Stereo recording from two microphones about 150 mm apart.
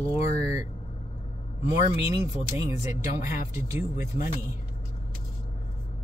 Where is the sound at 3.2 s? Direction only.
20° right (ahead or behind).